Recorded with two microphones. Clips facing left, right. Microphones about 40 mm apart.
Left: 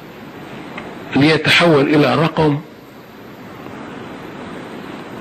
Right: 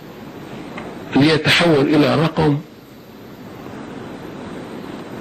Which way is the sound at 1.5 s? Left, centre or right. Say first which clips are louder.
Left 2 dB; centre.